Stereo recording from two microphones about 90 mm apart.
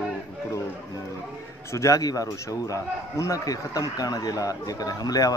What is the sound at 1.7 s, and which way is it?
A man's voice, 35° left (ahead or behind).